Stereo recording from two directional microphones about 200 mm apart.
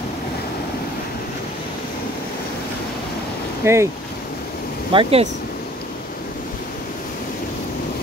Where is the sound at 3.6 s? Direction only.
15° right (ahead or behind).